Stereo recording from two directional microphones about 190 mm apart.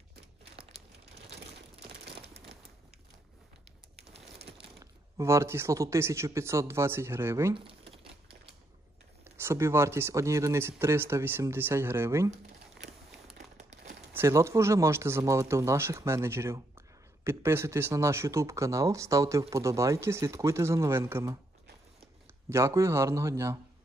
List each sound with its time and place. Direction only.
0.6 s crumpling: 35° right (ahead or behind)
4.7 s speech: 15° right (ahead or behind)
7.5 s crumpling: 30° right (ahead or behind)
9.2 s speech: 15° right (ahead or behind)
14.1 s speech: 15° right (ahead or behind)
22.5 s speech: 15° right (ahead or behind)